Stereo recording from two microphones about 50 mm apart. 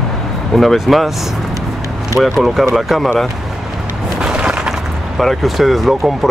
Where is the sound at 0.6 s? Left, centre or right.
Centre.